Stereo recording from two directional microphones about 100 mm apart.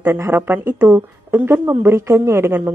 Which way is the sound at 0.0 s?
25° right (ahead or behind).